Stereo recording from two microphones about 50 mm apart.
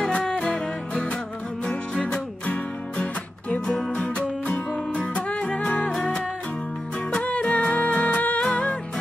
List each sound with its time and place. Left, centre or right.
0.0 s music: centre
1.7 s music: centre
2.5 s music: left
7.1 s music: left